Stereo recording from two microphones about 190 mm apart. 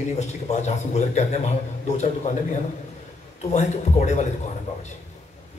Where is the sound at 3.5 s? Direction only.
40° left (ahead or behind).